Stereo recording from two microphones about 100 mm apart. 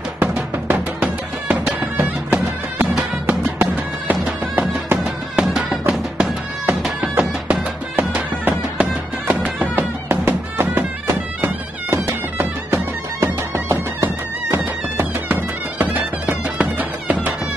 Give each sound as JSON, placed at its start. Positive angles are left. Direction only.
{"t": 0.2, "sound": "music", "side_deg": -15}
{"t": 5.0, "sound": "music", "side_deg": -5}